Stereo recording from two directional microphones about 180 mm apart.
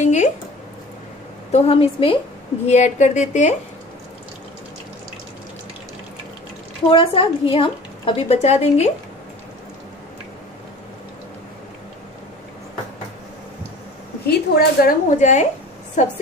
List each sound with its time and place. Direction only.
0.0 s a sound: 40° left (ahead or behind)
1.5 s a woman's voice: 35° left (ahead or behind)
6.9 s a woman's voice: 30° left (ahead or behind)
14.2 s a woman's voice: 60° left (ahead or behind); by 15.4 s 45° left (ahead or behind)